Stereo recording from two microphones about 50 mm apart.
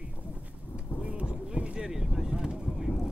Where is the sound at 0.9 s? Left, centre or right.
Right.